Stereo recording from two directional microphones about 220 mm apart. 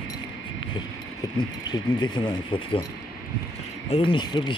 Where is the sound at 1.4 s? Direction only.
20° left (ahead or behind).